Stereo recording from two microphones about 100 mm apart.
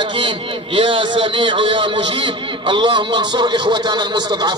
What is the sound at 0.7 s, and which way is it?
A man's voice, 55° right (ahead or behind).